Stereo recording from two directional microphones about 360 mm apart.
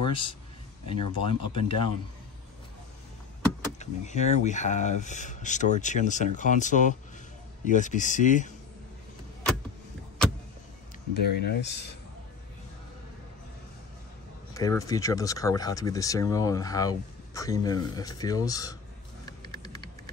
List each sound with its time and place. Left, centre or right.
0.0 s a sound: centre
0.8 s speech: centre
3.8 s speech: centre
11.1 s speech: left
14.5 s speech: centre
19.2 s a sound: centre